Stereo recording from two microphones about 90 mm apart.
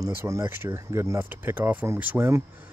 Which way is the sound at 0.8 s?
40° right (ahead or behind).